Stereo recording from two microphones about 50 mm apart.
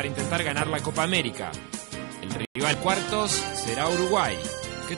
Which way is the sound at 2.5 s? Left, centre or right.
Right.